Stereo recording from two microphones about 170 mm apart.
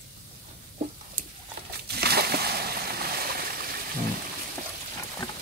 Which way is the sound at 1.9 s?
70° right (ahead or behind).